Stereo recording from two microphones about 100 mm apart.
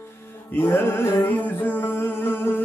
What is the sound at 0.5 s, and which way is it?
Music, 20° left (ahead or behind).